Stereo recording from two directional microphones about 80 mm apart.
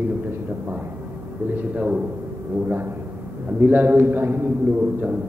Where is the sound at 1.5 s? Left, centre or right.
Centre.